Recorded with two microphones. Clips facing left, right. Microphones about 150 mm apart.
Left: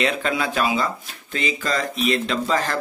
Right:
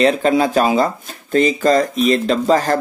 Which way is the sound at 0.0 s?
35° right (ahead or behind).